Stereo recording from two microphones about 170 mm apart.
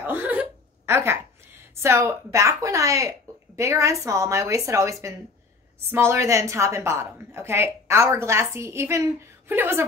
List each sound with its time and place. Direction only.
0.0 s hiccup: 10° right (ahead or behind)
1.8 s a woman's voice: 15° right (ahead or behind)